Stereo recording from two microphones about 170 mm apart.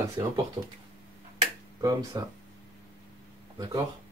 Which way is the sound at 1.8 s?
20° right (ahead or behind).